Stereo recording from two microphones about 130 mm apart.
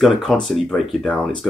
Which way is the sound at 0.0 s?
Centre (ahead or behind).